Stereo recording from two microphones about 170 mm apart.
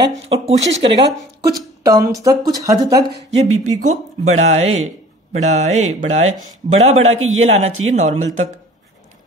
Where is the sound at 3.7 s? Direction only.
40° right (ahead or behind).